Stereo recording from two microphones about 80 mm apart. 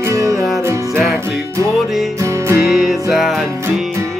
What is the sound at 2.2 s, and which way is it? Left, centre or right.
Music, right.